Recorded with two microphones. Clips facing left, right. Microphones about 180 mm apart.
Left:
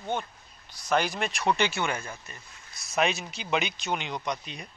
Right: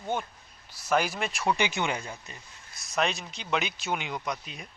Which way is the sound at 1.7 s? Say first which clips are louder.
Even; 15° right (ahead or behind).